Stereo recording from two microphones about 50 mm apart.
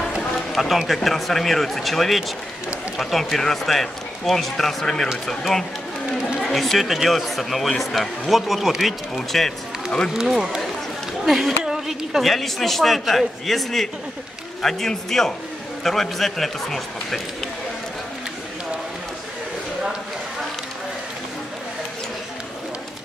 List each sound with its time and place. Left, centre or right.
0.6 s speech: centre
10.1 s a woman's voice: centre
12.2 s a man's voice: centre